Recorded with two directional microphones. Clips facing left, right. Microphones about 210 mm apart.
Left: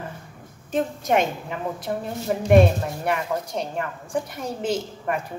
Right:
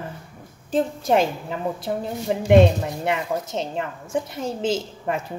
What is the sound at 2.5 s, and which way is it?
A woman's voice, 25° right (ahead or behind).